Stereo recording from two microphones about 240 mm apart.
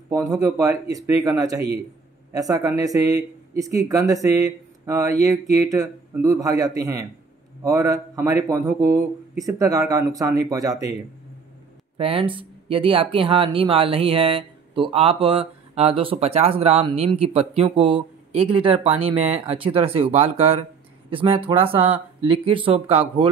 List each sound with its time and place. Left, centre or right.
0.1 s speech: centre
12.0 s speech: right